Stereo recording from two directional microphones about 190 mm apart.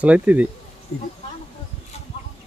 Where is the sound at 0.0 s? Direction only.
5° right (ahead or behind).